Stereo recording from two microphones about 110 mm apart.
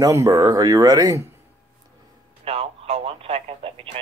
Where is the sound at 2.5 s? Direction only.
65° right (ahead or behind).